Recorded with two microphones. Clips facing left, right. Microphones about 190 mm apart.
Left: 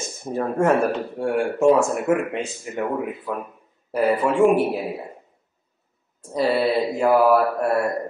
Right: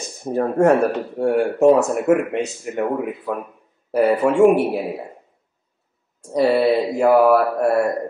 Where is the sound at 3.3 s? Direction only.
65° right (ahead or behind).